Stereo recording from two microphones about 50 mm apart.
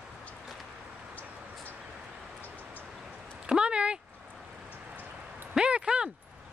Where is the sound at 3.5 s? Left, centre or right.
Centre.